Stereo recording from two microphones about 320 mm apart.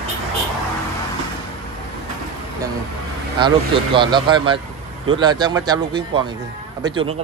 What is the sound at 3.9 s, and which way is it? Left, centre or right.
Speech, centre.